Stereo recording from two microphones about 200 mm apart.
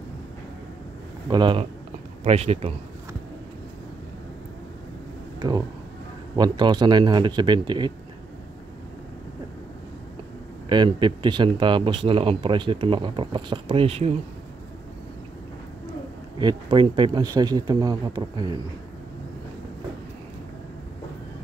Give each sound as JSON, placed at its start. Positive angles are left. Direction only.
{"t": 1.3, "sound": "speech", "side_deg": -25}
{"t": 5.4, "sound": "speech", "side_deg": -20}
{"t": 10.7, "sound": "speech", "side_deg": -25}
{"t": 16.3, "sound": "speech", "side_deg": -25}